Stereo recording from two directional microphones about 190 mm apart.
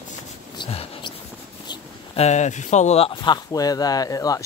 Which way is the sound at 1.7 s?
35° left (ahead or behind).